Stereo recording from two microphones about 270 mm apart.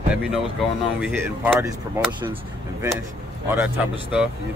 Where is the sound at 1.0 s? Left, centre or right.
Centre.